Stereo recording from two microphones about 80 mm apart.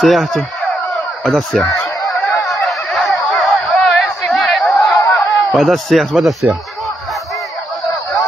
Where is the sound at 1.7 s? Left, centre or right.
Left.